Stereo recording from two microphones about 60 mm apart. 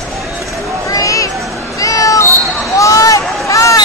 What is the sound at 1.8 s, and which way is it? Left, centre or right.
Cat, left.